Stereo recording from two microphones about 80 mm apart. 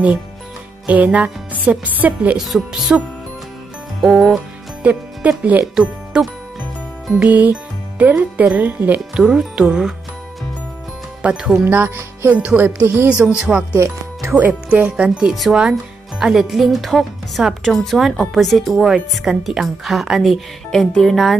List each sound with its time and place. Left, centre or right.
0.8 s speech: centre
2.3 s speech: centre
2.9 s speech: centre
4.8 s speech: centre
9.2 s speech: centre
11.2 s speech: centre
11.6 s speech: right
13.1 s speech: centre
15.0 s speech: centre